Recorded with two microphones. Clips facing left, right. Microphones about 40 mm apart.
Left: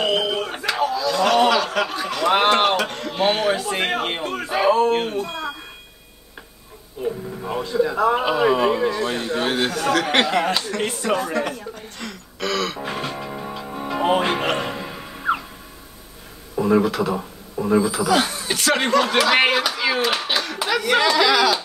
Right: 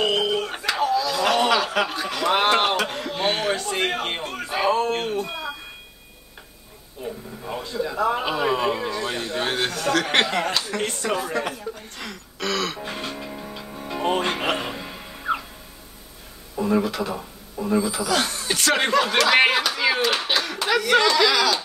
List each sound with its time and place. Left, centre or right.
0.0 s speech: centre
7.0 s speech: centre
13.3 s music: left
13.9 s speech: centre
14.4 s music: centre
16.5 s speech: centre